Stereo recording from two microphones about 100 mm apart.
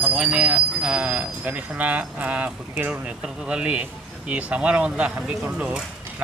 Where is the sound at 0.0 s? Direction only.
15° right (ahead or behind).